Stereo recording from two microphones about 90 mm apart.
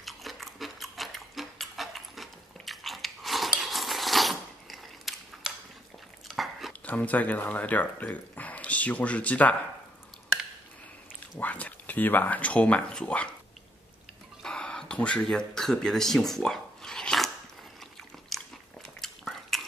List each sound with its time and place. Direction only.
0.0 s a sound: centre (ahead or behind)
6.2 s biting: centre (ahead or behind)
6.7 s speech: 15° left (ahead or behind)
11.3 s speech: 15° left (ahead or behind)
14.4 s a sound: 10° left (ahead or behind)
18.3 s biting: 5° left (ahead or behind)